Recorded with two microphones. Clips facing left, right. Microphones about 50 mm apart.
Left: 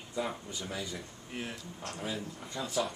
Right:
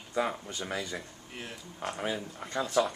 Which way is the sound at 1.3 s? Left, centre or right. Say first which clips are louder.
Left 3 dB; centre.